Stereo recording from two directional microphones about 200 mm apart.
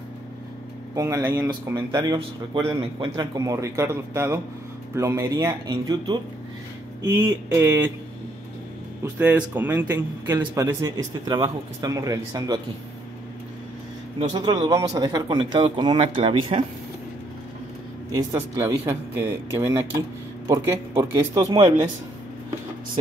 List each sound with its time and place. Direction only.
0.9 s speech: 15° right (ahead or behind)
9.0 s speech: 10° right (ahead or behind)
14.3 s speech: 20° right (ahead or behind)
18.1 s speech: 15° right (ahead or behind)